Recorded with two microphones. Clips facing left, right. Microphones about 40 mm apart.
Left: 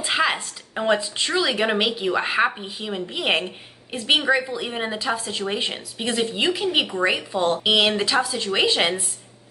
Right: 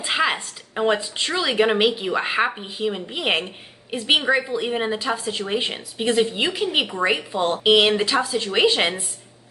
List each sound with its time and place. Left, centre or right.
0.0 s speech: centre